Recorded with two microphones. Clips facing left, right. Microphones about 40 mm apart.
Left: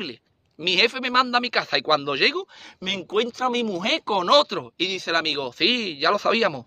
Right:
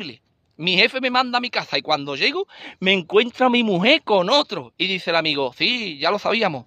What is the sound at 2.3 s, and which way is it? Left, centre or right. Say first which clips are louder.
Speech: right 4 dB; right.